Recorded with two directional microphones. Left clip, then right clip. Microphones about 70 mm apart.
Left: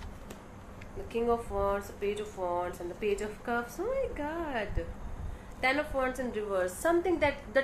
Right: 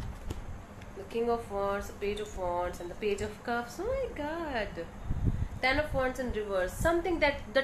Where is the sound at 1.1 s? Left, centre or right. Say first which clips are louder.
Left 1 dB; centre.